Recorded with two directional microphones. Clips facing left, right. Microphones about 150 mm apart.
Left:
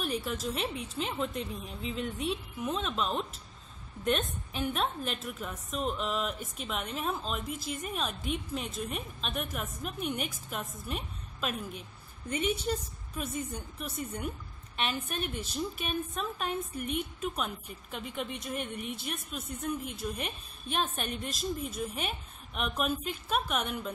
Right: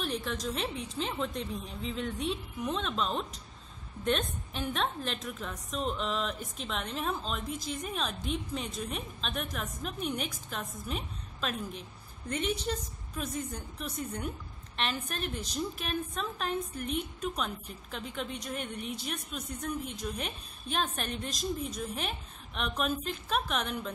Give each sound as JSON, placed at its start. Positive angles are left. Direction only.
{"t": 0.0, "sound": "a woman's voice", "side_deg": 5}